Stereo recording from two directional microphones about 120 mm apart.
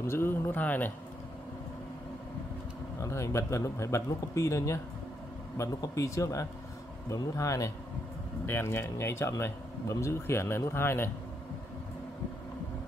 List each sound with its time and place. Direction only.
0.0 s speech: 20° left (ahead or behind)
3.0 s speech: 25° left (ahead or behind)